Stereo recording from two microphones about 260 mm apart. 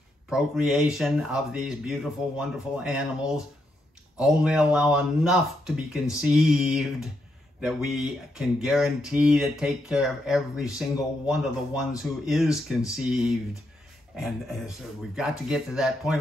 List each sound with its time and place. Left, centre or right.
0.3 s speech: centre
4.2 s speech: centre